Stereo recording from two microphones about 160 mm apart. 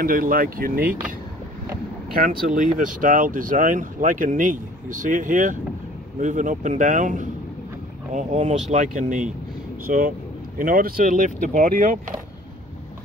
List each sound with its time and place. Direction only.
0.0 s speech: 60° right (ahead or behind)
2.1 s speech: 60° right (ahead or behind)
9.8 s speech: 60° right (ahead or behind)